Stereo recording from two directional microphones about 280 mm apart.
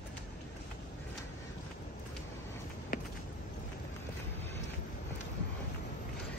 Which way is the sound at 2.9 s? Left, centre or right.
Left.